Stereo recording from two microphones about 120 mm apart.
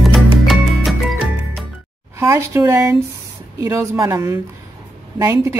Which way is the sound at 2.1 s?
20° right (ahead or behind).